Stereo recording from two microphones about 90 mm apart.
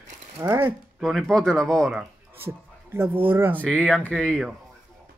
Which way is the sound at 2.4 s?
25° right (ahead or behind).